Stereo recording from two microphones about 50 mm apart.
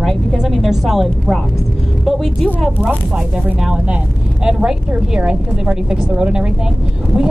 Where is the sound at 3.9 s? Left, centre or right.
Centre.